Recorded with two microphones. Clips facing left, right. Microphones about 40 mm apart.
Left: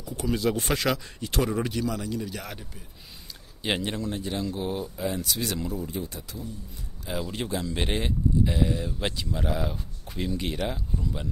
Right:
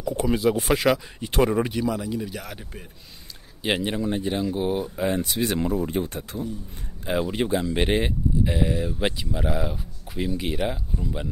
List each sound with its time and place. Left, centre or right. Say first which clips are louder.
0.0 s a sound: right 8 dB; right
0.3 s speech: right 3 dB; centre
1.3 s speech: right 6 dB; right
1.6 s speech: right 4 dB; centre
3.6 s speech: right 4 dB; centre; by 6.5 s right
7.2 s speech: right 6 dB; right